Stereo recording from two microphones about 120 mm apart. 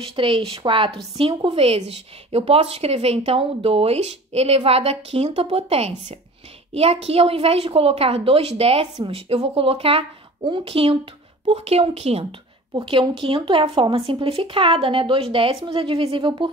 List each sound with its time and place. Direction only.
0.0 s a woman's voice: 45° right (ahead or behind)
12.8 s a woman's voice: 45° right (ahead or behind)